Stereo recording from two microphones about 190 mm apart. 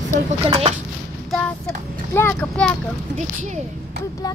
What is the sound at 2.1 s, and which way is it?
Speech, 10° left (ahead or behind).